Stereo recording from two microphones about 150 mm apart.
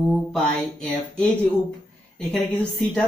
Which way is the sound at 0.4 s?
10° left (ahead or behind).